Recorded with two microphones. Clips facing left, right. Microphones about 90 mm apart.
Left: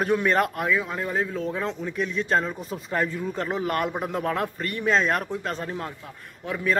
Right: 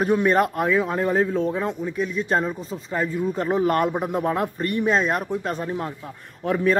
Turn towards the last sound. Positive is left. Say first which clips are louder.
# right 5 dB
turn(degrees=-40)  # may be behind; listen again after turning